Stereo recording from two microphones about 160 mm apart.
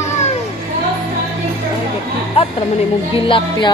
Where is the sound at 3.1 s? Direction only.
35° left (ahead or behind).